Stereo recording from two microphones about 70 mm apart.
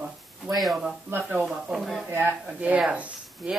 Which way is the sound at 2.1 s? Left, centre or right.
Right.